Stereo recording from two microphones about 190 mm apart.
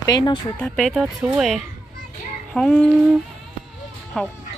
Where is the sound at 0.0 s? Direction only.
20° left (ahead or behind).